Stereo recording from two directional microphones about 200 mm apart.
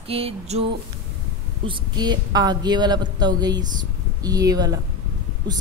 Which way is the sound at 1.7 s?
20° right (ahead or behind).